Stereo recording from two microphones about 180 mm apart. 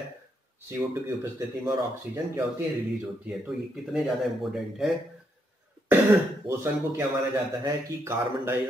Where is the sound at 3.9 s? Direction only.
5° right (ahead or behind).